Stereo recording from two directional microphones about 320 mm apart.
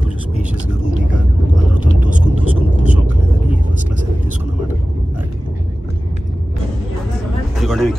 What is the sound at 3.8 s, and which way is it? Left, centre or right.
Vehicle, right.